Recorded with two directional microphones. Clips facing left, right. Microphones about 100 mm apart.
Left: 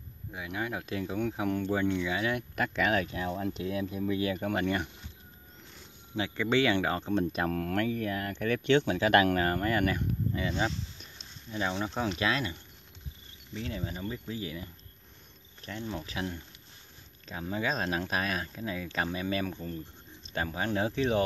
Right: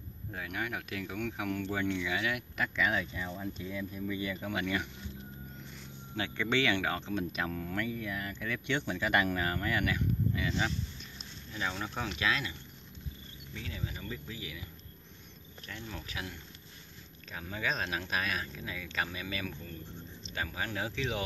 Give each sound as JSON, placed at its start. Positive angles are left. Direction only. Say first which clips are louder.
{"t": 0.3, "sound": "speech", "louder": "left 2 dB", "side_deg": 20}
{"t": 2.5, "sound": "speech", "louder": "left 4 dB", "side_deg": 50}
{"t": 4.4, "sound": "speech", "louder": "left 4 dB", "side_deg": 45}
{"t": 6.2, "sound": "speech", "louder": "left 4 dB", "side_deg": 20}
{"t": 7.5, "sound": "speech", "louder": "left 6 dB", "side_deg": 65}
{"t": 9.4, "sound": "speech", "louder": "left 5 dB", "side_deg": 40}
{"t": 11.5, "sound": "speech", "louder": "left 5 dB", "side_deg": 25}
{"t": 13.6, "sound": "speech", "louder": "left 6 dB", "side_deg": 35}